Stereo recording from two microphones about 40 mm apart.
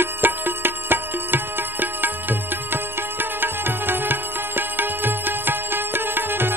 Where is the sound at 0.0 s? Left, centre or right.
Right.